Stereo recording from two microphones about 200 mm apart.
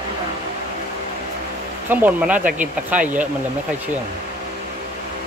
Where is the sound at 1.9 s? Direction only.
10° right (ahead or behind).